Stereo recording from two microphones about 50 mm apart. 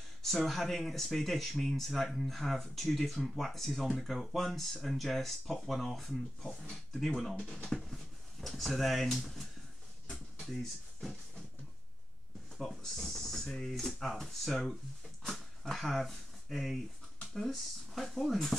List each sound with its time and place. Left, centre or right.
0.2 s speech: centre
7.3 s speech: centre
10.4 s drawer open or close: centre
12.5 s speech: centre